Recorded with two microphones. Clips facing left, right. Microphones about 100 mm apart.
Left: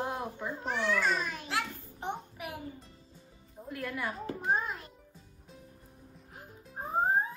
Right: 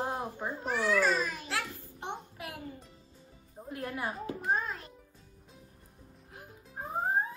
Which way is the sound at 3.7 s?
30° right (ahead or behind).